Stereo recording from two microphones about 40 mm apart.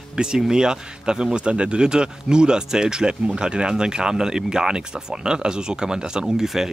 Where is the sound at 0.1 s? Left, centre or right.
Centre.